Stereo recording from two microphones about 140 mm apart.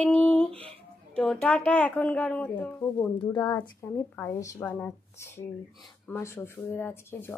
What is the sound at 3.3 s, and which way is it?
Speech, 30° left (ahead or behind).